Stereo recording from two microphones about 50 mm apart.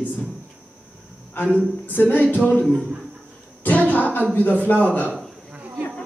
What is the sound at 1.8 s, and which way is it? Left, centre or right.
Music, left.